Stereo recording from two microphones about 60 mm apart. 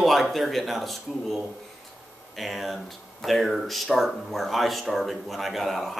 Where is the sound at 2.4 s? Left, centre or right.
Centre.